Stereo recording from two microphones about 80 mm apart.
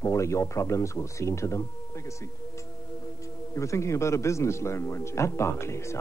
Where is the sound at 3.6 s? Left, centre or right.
Left.